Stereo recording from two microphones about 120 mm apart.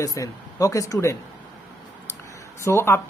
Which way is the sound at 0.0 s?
30° left (ahead or behind).